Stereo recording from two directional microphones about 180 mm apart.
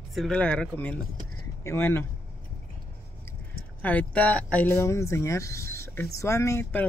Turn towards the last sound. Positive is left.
turn(degrees=15)  # may be behind; listen again after turning